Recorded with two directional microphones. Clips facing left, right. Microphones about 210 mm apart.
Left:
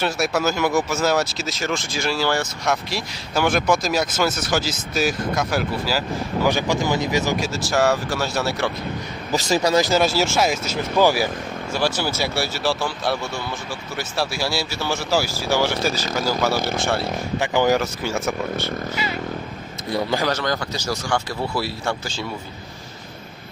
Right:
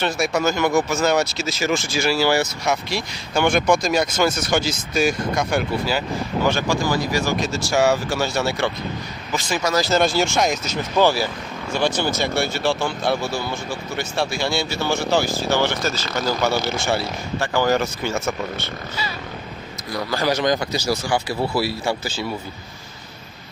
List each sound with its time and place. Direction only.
0.0 s speech: 5° left (ahead or behind)
6.4 s speech: 15° left (ahead or behind)
7.3 s speech: 5° left (ahead or behind)
9.3 s speech: 35° left (ahead or behind)
9.8 s speech: 5° left (ahead or behind)
17.4 s speech: 15° left (ahead or behind)
19.9 s speech: 25° left (ahead or behind)
20.2 s speech: 15° right (ahead or behind)